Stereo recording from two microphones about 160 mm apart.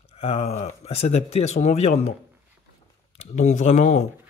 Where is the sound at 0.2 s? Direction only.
40° left (ahead or behind).